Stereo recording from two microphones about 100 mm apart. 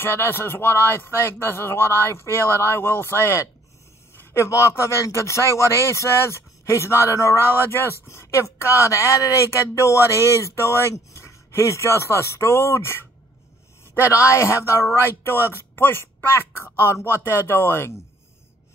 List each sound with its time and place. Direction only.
0.0 s speech: 25° left (ahead or behind)
14.1 s speech: 25° left (ahead or behind)